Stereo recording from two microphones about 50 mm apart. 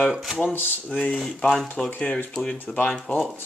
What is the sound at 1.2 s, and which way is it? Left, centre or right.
Speech, centre.